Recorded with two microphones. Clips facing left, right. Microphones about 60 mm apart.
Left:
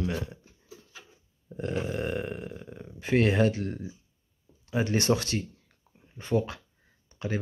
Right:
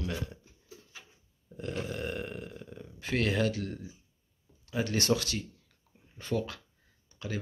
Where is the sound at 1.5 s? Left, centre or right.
Left.